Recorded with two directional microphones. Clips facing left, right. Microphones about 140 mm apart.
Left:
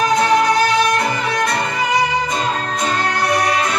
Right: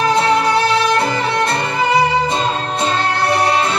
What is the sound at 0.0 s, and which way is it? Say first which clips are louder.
Music: even; 30° right (ahead or behind).